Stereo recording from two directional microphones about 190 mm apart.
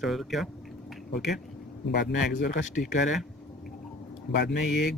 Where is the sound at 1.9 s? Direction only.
55° left (ahead or behind).